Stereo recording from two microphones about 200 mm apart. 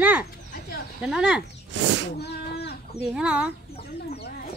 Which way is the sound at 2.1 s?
55° left (ahead or behind).